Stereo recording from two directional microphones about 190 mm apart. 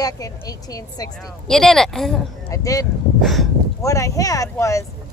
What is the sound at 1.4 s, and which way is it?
Speech, 5° left (ahead or behind).